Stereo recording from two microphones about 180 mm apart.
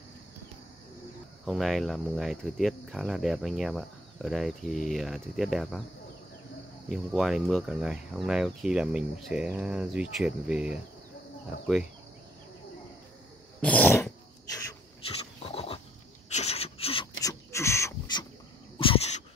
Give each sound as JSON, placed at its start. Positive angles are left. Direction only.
{"t": 1.4, "sound": "speech", "side_deg": 0}
{"t": 7.2, "sound": "speech", "side_deg": 0}
{"t": 13.6, "sound": "cough", "side_deg": 10}
{"t": 15.4, "sound": "a sound", "side_deg": 35}
{"t": 16.3, "sound": "rub", "side_deg": 35}
{"t": 17.2, "sound": "a sound", "side_deg": 15}
{"t": 18.8, "sound": "dog", "side_deg": 30}